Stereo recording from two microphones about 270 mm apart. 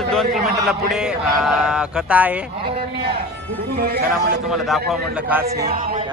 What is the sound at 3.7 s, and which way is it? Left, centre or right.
Speech, right.